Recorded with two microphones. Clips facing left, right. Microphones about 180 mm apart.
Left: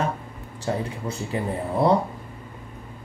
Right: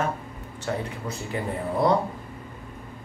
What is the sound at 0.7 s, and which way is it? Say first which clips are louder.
Speech: left 2 dB; 25° left (ahead or behind).